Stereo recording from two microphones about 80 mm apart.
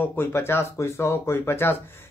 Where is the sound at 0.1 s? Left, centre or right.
Left.